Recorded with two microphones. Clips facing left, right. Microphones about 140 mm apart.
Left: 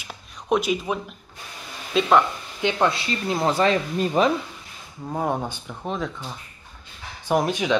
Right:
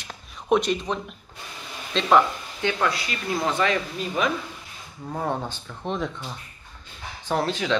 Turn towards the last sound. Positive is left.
turn(degrees=15)  # may be behind; listen again after turning